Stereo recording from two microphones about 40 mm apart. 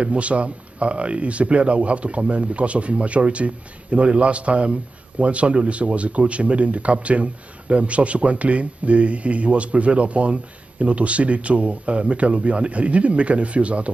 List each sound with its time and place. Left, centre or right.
0.0 s speech: right